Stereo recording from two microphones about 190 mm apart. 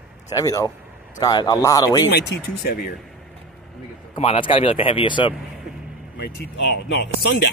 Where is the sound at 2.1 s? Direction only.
60° left (ahead or behind).